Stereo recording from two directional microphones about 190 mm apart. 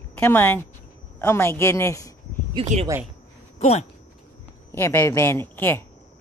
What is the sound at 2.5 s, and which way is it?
Speech, 35° right (ahead or behind).